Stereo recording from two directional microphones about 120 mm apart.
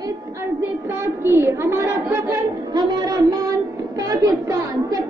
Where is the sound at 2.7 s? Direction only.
35° right (ahead or behind).